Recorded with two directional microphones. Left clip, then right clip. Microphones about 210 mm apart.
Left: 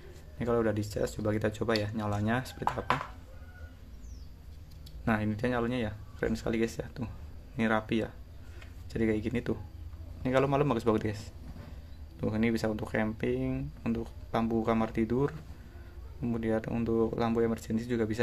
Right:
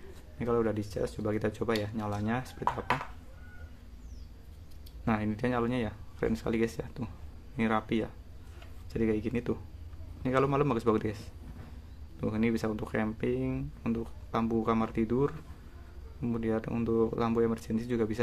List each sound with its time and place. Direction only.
0.4 s speech: 5° left (ahead or behind)
5.0 s speech: centre (ahead or behind)